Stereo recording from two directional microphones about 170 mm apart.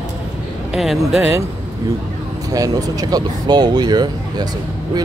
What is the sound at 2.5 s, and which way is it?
Speech, 20° right (ahead or behind).